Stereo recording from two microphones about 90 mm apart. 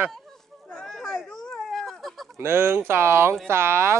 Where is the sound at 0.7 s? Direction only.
10° left (ahead or behind).